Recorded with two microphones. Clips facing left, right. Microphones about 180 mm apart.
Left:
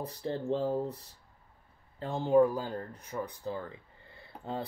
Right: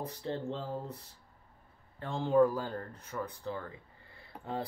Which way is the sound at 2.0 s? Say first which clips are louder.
Left 2 dB; 20° left (ahead or behind).